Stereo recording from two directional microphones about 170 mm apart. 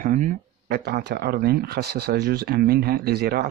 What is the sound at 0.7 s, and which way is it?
Speech, 65° right (ahead or behind).